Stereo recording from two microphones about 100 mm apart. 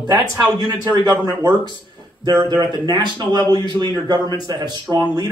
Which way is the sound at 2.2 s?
45° right (ahead or behind).